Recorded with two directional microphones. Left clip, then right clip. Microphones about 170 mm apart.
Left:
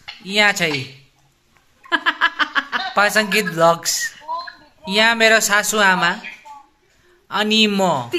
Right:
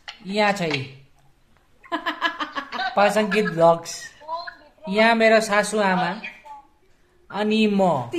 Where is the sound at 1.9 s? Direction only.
45° left (ahead or behind).